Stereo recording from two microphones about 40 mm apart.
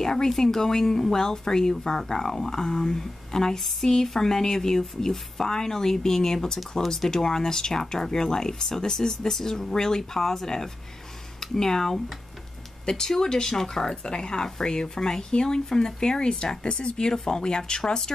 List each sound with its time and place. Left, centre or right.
0.0 s speech: centre